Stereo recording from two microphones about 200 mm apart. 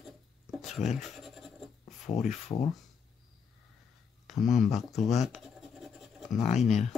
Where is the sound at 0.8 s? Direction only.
40° left (ahead or behind).